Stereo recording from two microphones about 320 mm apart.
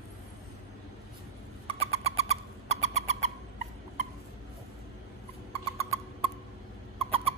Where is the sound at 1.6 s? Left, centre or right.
Centre.